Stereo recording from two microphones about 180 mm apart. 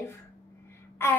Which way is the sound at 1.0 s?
15° left (ahead or behind).